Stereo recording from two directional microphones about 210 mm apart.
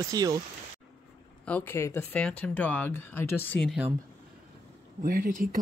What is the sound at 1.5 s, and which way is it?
Speech, 10° left (ahead or behind).